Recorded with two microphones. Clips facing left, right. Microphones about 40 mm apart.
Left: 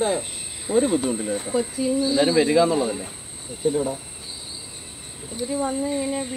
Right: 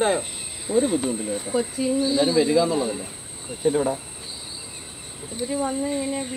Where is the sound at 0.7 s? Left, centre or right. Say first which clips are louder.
Left 1 dB; left.